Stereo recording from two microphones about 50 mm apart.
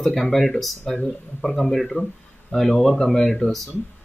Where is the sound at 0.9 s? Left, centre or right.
Centre.